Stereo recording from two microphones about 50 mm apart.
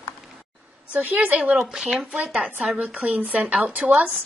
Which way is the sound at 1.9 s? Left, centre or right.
Centre.